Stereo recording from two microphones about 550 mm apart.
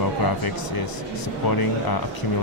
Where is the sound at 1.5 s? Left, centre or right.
Left.